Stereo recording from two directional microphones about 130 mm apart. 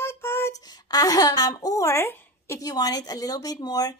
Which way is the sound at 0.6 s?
30° left (ahead or behind).